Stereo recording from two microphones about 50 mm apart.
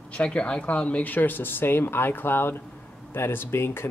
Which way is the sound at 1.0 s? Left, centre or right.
Left.